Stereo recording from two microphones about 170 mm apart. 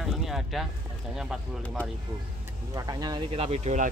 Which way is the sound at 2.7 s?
20° right (ahead or behind).